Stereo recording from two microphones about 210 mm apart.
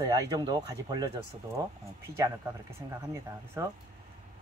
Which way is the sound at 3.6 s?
15° right (ahead or behind).